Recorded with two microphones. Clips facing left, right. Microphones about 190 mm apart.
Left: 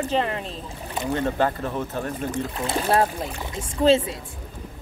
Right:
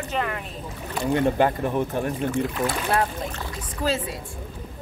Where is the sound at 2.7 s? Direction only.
30° left (ahead or behind).